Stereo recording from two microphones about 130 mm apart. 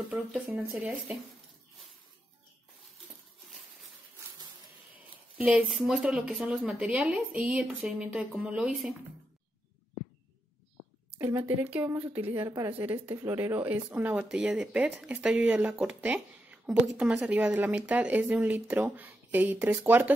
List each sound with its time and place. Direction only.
0.5 s speech: 20° right (ahead or behind)
5.4 s speech: 10° right (ahead or behind)
11.1 s speech: 15° right (ahead or behind)
12.7 s speech: 15° right (ahead or behind)